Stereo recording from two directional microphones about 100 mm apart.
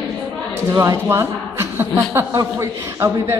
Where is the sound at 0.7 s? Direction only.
25° right (ahead or behind).